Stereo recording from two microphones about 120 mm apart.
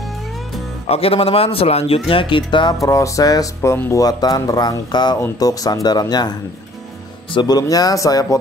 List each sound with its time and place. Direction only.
0.8 s a man's voice: 55° left (ahead or behind)
2.0 s a man's voice: 45° left (ahead or behind)
2.8 s speech: 25° left (ahead or behind)
7.3 s speech: 35° left (ahead or behind)